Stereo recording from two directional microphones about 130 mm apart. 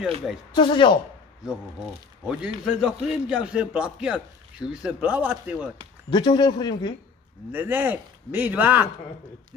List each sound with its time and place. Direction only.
0.5 s speech: 35° left (ahead or behind)
2.2 s a man's voice: 5° right (ahead or behind)
6.0 s speech: 35° left (ahead or behind)
7.5 s a man's voice: 15° right (ahead or behind)